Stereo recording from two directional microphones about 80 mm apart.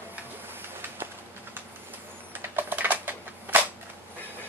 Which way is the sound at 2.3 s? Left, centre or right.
Right.